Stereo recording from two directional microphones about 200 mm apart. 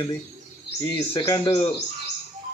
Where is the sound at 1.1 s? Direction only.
25° left (ahead or behind).